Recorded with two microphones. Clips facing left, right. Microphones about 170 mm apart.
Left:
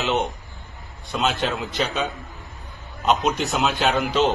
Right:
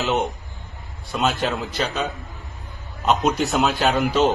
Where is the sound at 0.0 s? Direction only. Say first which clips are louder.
Right 1 dB; centre (ahead or behind).